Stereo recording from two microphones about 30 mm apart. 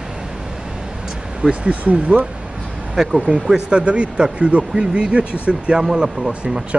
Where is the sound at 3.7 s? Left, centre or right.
Right.